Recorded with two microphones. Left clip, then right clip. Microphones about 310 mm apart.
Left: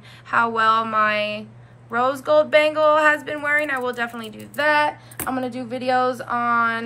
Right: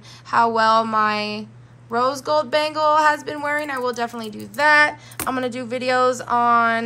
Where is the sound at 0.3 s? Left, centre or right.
Centre.